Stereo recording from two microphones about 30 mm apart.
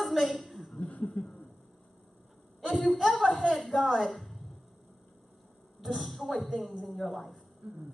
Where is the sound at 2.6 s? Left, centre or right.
Centre.